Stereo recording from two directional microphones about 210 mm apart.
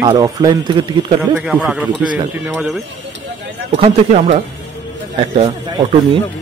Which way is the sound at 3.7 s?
30° right (ahead or behind).